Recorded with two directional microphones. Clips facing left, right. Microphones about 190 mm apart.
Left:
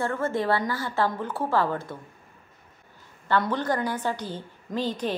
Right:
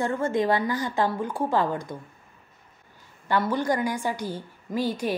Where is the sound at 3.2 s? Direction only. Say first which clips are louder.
Right 1 dB; 10° right (ahead or behind).